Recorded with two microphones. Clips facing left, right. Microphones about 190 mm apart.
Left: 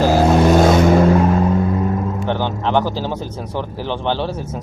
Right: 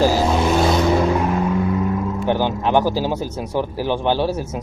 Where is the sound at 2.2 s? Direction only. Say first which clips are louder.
Right 4 dB; 10° right (ahead or behind).